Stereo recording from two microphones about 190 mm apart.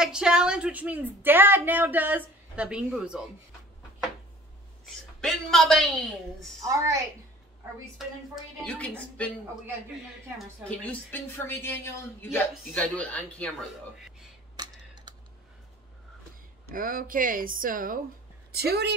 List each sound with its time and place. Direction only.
0.0 s speech: 5° right (ahead or behind)
4.8 s a man's voice: centre (ahead or behind)
6.6 s speech: 15° right (ahead or behind)
10.6 s a woman's voice: 5° left (ahead or behind)
14.6 s computer keyboard: 20° right (ahead or behind)
16.7 s a woman's voice: 45° right (ahead or behind)